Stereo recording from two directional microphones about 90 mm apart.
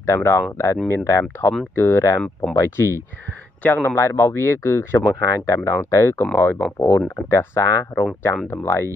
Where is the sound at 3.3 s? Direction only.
20° left (ahead or behind).